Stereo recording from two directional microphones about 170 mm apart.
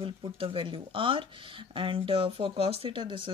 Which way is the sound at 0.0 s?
30° right (ahead or behind).